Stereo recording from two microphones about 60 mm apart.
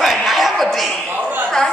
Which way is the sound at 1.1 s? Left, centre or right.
Right.